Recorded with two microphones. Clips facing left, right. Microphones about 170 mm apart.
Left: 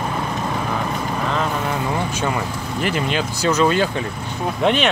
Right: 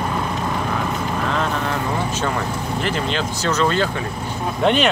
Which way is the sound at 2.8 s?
10° left (ahead or behind).